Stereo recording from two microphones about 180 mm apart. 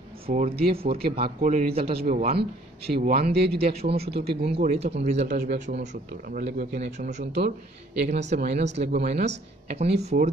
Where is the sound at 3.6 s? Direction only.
35° right (ahead or behind).